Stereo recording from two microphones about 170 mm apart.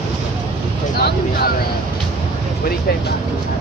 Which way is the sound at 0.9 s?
65° left (ahead or behind).